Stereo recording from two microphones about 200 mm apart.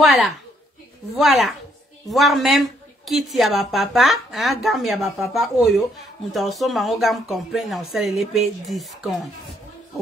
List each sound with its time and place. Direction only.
0.0 s a woman's voice: centre (ahead or behind)